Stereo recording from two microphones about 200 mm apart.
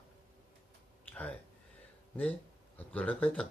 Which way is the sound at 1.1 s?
10° left (ahead or behind).